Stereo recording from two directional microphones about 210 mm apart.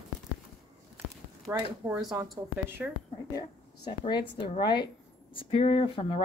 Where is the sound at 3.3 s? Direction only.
20° left (ahead or behind).